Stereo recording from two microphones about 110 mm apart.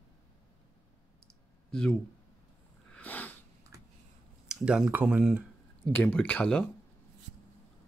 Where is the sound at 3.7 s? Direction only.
30° right (ahead or behind).